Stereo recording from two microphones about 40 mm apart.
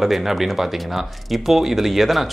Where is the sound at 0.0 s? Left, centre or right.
Centre.